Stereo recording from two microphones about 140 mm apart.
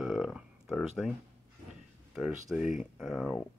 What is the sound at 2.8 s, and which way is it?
Speech, 5° right (ahead or behind).